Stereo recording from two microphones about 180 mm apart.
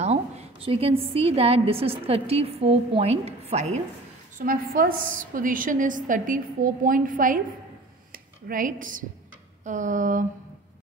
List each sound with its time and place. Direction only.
0.0 s a woman's voice: 35° right (ahead or behind)
4.4 s a woman's voice: 50° right (ahead or behind)
8.1 s a sound: 50° right (ahead or behind)
9.7 s a woman's voice: 45° right (ahead or behind)